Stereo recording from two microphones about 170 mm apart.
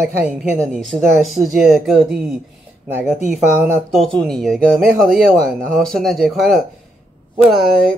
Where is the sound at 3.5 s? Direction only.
15° right (ahead or behind).